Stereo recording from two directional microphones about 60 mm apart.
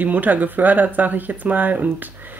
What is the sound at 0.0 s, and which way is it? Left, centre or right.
Speech, right.